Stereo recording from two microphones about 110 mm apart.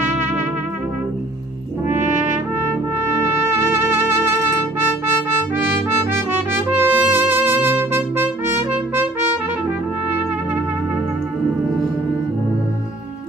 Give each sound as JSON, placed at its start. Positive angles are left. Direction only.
{"t": 3.2, "sound": "music", "side_deg": -20}
{"t": 6.1, "sound": "brass instrument", "side_deg": -20}